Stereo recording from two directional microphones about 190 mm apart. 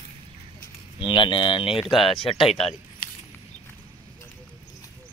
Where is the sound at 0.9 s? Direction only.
25° left (ahead or behind).